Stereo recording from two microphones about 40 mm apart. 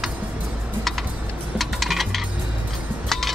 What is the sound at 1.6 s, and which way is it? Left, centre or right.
Coin, centre.